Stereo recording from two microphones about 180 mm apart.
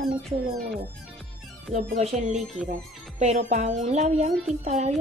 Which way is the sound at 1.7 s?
35° right (ahead or behind).